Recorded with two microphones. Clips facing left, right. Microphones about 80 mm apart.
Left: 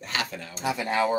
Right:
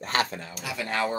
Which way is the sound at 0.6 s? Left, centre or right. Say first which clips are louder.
Left 4 dB; left.